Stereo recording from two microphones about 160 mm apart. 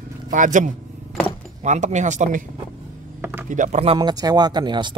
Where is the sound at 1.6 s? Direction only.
50° right (ahead or behind).